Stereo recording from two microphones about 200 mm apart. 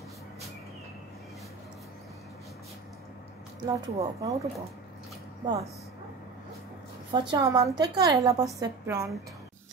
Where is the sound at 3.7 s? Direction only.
15° right (ahead or behind).